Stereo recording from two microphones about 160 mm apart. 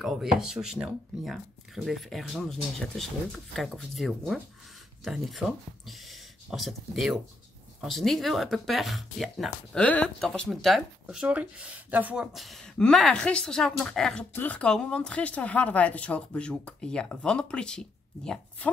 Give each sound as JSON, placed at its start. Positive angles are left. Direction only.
{"t": 0.0, "sound": "speech", "side_deg": 0}